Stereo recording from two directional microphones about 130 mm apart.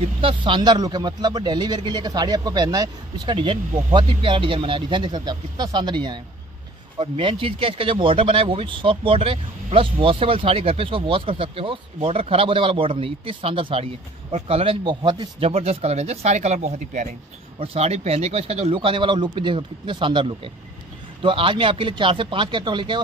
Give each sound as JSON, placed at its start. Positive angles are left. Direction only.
{"t": 0.2, "sound": "speech", "side_deg": -40}
{"t": 15.5, "sound": "speech", "side_deg": -50}
{"t": 17.6, "sound": "speech", "side_deg": -55}